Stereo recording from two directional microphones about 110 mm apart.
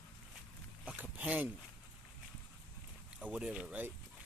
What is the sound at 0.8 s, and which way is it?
Speech, 15° right (ahead or behind).